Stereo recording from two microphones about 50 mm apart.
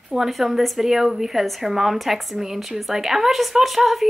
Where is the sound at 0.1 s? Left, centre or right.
Centre.